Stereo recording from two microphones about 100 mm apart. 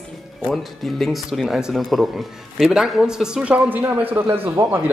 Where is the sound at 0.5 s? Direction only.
Centre (ahead or behind).